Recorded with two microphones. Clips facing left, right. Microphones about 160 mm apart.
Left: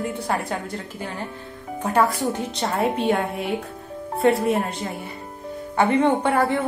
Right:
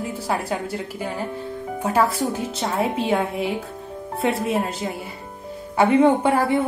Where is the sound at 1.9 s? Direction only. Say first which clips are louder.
Left 1 dB; centre (ahead or behind).